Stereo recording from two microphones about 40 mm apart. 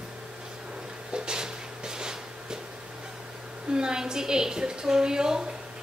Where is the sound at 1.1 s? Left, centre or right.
Centre.